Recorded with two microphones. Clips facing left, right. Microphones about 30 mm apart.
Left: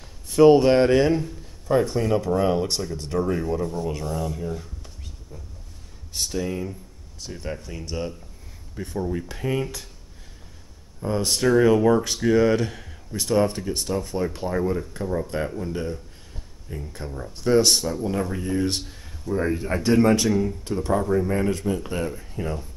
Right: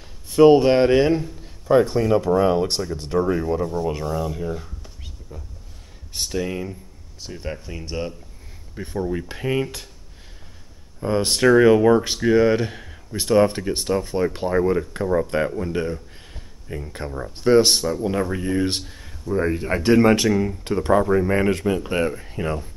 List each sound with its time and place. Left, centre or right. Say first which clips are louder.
0.0 s speech: right 2 dB; centre
11.0 s speech: right 3 dB; right
11.4 s speech: right 4 dB; right
19.6 s speech: right 3 dB; right
21.3 s speech: right 4 dB; right